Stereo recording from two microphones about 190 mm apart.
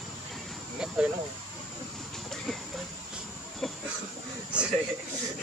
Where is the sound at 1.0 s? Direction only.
5° right (ahead or behind).